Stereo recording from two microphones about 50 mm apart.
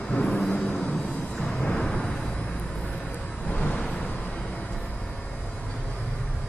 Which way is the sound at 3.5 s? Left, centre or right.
Centre.